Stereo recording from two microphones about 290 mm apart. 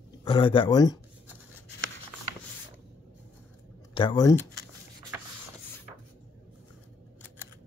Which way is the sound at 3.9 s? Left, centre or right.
Centre.